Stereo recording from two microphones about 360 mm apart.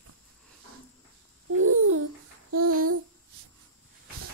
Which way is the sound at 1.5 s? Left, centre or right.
Right.